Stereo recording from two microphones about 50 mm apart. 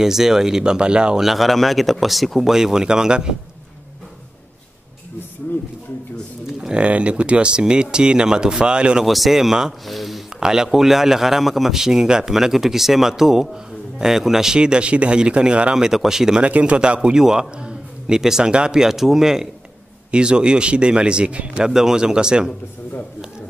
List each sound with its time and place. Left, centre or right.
0.0 s a man's voice: centre
1.2 s speech: centre
2.5 s a man's voice: centre
6.8 s a man's voice: right
9.0 s speech: centre
10.4 s a man's voice: centre
16.4 s a man's voice: right
21.6 s a man's voice: centre